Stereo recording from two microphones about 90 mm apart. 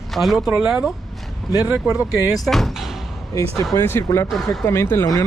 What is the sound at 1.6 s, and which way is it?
Speech, 25° right (ahead or behind).